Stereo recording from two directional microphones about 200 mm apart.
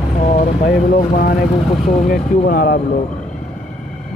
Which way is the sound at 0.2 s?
35° left (ahead or behind).